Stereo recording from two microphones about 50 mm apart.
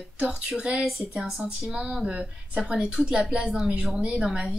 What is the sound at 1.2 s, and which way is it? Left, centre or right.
A woman's voice, centre.